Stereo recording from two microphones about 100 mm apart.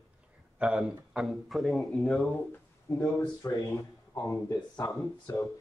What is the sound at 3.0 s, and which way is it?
Speech, 35° left (ahead or behind).